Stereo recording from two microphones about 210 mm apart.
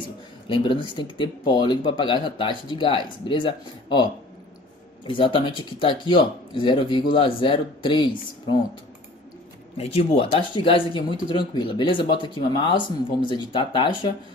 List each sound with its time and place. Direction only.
0.5 s speech: 25° left (ahead or behind)
9.8 s speech: 30° left (ahead or behind)